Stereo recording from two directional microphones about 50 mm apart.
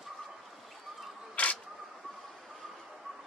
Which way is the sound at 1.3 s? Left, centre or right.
Left.